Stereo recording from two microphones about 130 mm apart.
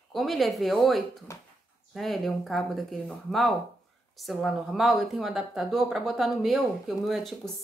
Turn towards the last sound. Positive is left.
turn(degrees=0)  # may be behind; listen again after turning